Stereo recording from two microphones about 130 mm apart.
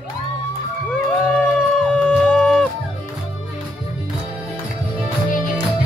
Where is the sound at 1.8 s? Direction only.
5° left (ahead or behind).